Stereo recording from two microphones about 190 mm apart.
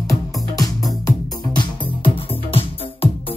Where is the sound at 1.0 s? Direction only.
25° left (ahead or behind).